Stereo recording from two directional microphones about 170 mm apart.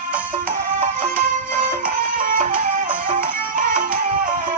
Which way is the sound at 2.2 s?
50° right (ahead or behind).